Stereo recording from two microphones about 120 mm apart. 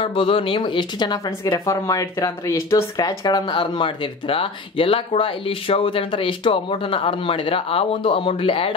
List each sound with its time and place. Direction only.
0.0 s a woman's voice: 45° left (ahead or behind)